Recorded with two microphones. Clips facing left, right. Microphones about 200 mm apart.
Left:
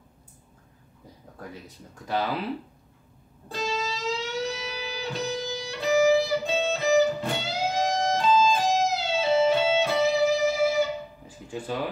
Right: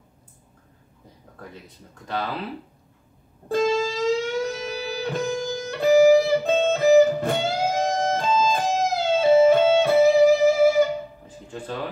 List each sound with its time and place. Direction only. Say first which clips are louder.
3.5 s music: right 9 dB; 50° right (ahead or behind)
11.2 s music: even; 10° left (ahead or behind)